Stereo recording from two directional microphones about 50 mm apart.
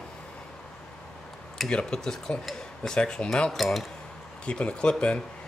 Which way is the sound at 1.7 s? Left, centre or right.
Centre.